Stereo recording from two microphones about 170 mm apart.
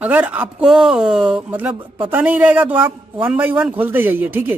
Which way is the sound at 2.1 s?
10° right (ahead or behind).